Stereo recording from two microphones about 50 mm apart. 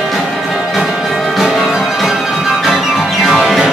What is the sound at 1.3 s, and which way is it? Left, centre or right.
Music, centre.